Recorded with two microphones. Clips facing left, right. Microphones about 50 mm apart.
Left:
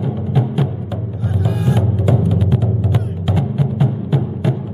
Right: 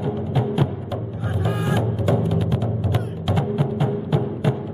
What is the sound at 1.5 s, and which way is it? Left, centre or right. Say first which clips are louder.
Music: left 3 dB; right.